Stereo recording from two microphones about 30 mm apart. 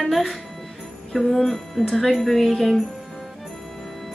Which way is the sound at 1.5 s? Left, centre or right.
Centre.